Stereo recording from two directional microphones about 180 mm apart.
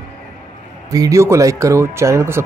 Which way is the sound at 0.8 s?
20° right (ahead or behind).